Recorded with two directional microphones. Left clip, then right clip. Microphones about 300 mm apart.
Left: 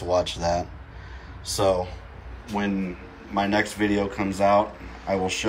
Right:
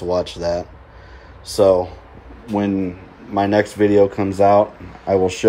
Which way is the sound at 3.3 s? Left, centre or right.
Right.